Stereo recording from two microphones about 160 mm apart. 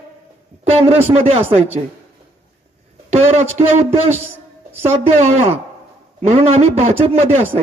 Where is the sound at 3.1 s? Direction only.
40° right (ahead or behind).